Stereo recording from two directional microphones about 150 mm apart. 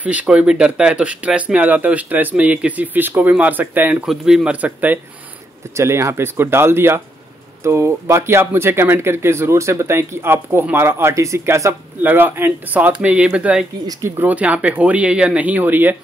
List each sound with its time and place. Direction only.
0.0 s speech: 10° right (ahead or behind)